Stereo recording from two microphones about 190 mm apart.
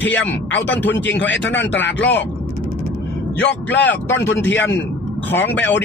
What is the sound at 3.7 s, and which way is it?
Speech, 70° left (ahead or behind).